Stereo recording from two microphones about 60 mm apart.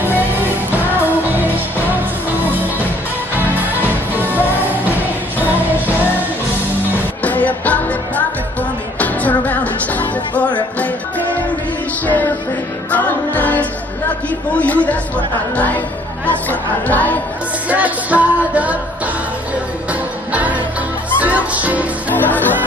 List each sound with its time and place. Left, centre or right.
0.7 s music: right
4.1 s music: right
7.2 s music: left
9.0 s music: left
12.9 s music: left
14.6 s speech: left
16.3 s speech: left
17.6 s music: right
19.9 s music: right
22.1 s music: left